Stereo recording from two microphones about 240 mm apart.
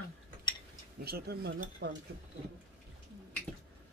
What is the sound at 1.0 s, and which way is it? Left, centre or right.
Speech, right.